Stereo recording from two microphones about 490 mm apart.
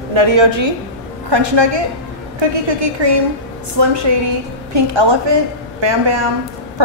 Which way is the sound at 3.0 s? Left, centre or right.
Right.